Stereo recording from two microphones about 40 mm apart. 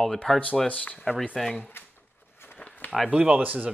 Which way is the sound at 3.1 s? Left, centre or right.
Right.